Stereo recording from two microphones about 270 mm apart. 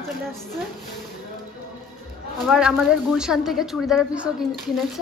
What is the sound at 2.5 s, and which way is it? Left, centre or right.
A woman's voice, centre.